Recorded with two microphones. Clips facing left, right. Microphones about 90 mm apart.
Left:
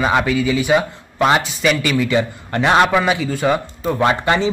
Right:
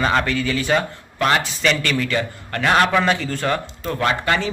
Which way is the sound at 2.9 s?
5° left (ahead or behind).